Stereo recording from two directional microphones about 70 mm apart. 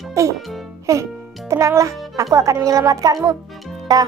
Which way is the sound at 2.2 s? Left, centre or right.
Right.